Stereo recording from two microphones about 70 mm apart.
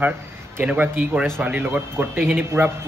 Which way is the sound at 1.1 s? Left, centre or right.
Centre.